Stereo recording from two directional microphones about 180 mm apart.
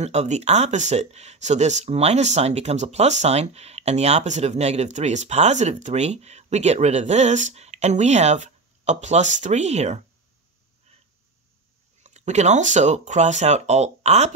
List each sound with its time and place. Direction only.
0.0 s speech: 40° right (ahead or behind)
12.0 s speech: 40° right (ahead or behind)